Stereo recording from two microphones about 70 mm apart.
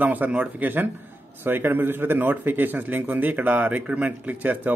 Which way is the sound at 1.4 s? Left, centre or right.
Right.